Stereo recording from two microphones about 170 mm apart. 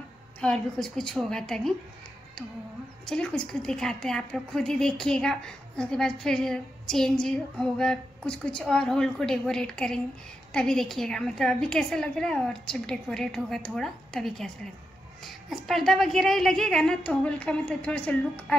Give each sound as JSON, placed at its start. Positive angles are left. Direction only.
{"t": 0.4, "sound": "a woman's voice", "side_deg": 5}
{"t": 3.1, "sound": "a woman's voice", "side_deg": 5}